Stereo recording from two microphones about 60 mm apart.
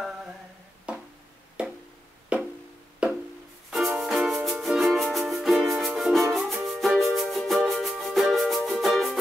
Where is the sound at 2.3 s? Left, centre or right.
Centre.